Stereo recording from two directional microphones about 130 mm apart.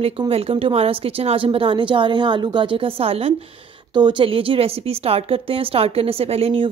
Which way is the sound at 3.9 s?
35° right (ahead or behind).